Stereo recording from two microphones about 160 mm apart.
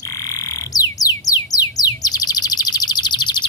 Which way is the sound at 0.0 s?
20° left (ahead or behind).